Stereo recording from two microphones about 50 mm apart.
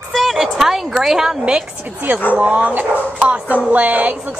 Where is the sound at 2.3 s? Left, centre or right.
Right.